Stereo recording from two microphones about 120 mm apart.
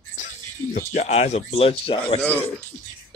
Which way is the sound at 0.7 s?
85° left.